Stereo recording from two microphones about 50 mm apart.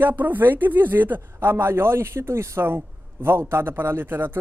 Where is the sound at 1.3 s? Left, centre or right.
Right.